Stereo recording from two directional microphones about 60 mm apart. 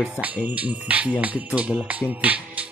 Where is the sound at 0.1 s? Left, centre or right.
Right.